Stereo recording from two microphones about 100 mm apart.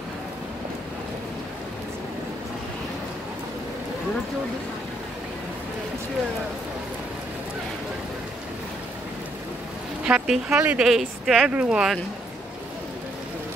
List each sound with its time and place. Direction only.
10.0 s a woman's voice: 5° right (ahead or behind)
10.5 s a woman's voice: 20° right (ahead or behind)
10.8 s speech: 5° right (ahead or behind)